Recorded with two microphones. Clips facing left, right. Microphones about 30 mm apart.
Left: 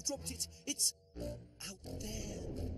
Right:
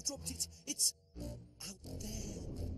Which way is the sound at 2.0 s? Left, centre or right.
Left.